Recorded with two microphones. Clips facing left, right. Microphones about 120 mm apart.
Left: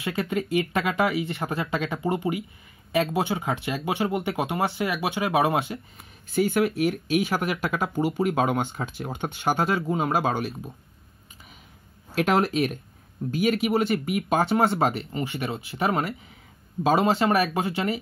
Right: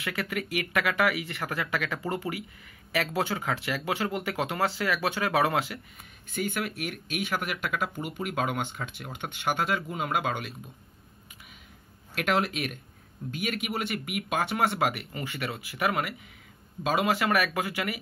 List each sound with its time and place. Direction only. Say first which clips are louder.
0.0 s speech: left 5 dB; 25° left (ahead or behind)
6.3 s speech: left 9 dB; 40° left (ahead or behind)
12.2 s speech: left 6 dB; 30° left (ahead or behind)